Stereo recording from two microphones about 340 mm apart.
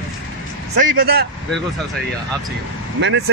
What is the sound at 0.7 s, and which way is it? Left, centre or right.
Speech, right.